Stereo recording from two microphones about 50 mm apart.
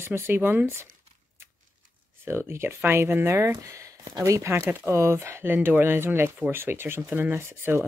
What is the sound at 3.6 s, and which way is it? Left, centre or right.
Speech, right.